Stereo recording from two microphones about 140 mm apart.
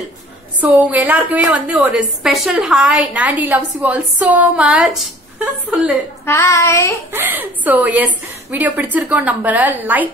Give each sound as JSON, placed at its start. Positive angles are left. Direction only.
{"t": 0.6, "sound": "a woman's voice", "side_deg": -10}
{"t": 6.2, "sound": "child singing", "side_deg": 20}
{"t": 7.1, "sound": "a woman's voice", "side_deg": -15}